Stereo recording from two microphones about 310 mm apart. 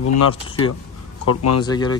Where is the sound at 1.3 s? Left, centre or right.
Left.